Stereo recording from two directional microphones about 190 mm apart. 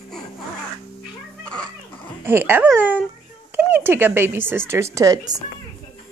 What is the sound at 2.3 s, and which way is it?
Speech, 10° right (ahead or behind).